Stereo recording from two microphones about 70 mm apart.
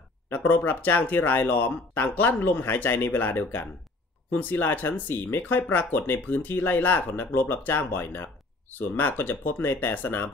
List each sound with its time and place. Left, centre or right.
0.3 s speech: left